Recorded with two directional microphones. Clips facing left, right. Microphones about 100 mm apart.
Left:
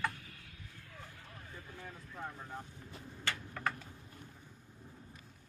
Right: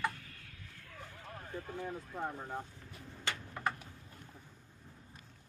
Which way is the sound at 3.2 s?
20° right (ahead or behind).